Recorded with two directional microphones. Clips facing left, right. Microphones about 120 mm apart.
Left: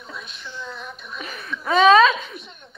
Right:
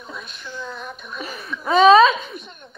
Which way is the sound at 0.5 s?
10° right (ahead or behind).